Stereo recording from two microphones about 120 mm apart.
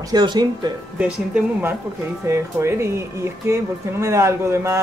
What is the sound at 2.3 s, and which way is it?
Speech, 20° right (ahead or behind).